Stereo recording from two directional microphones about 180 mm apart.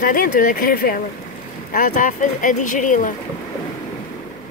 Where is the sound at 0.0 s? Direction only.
50° left (ahead or behind).